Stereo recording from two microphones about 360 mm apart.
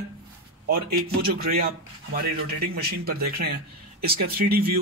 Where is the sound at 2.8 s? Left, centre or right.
Right.